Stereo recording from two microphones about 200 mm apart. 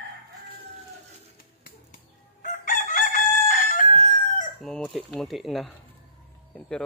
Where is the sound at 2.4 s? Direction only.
40° left (ahead or behind).